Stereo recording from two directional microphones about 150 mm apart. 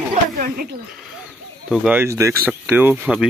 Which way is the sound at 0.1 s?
65° right (ahead or behind).